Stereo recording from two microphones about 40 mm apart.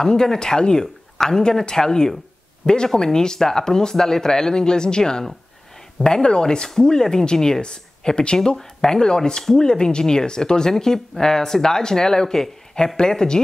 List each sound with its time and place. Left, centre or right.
0.0 s speech: centre
9.4 s speech: centre
9.7 s speech: centre